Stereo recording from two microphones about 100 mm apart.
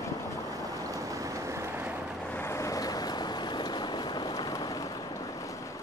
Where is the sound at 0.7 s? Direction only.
35° right (ahead or behind).